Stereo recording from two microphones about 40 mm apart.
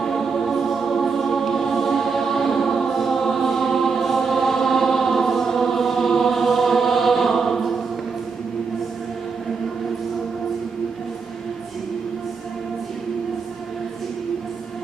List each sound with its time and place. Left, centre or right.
0.0 s music: centre